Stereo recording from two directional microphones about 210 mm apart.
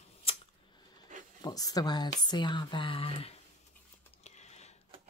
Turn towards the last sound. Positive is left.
turn(degrees=30)  # may be behind; listen again after turning